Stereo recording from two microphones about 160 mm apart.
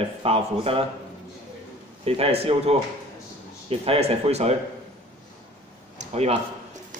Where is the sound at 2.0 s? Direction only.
40° right (ahead or behind).